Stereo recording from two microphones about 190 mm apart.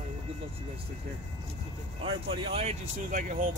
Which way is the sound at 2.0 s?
30° right (ahead or behind).